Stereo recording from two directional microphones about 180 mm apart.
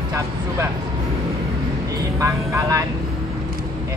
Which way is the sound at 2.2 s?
15° right (ahead or behind).